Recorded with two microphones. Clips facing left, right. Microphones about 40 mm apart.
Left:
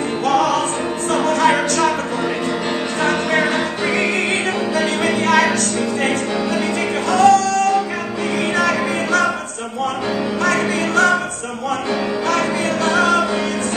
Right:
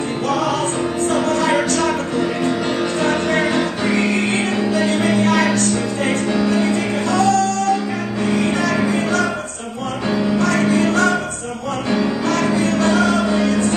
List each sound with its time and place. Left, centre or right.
1.0 s music: left
3.0 s music: left
4.7 s music: left
6.7 s music: left
12.4 s music: left